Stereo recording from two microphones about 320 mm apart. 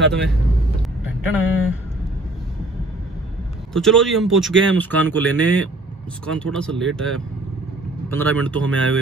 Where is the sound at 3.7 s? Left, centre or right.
Centre.